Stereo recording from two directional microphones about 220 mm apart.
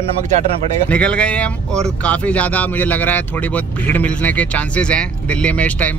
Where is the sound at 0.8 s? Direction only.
5° left (ahead or behind).